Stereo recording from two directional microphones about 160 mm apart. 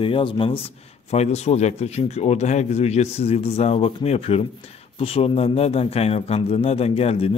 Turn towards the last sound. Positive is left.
turn(degrees=40)  # may be behind; listen again after turning